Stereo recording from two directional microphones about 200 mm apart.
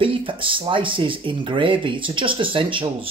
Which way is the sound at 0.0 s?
25° right (ahead or behind).